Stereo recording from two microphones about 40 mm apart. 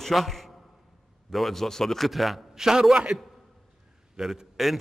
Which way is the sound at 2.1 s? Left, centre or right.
Centre.